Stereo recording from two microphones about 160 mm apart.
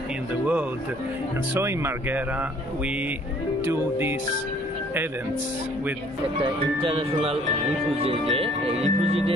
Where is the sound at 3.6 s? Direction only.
15° right (ahead or behind).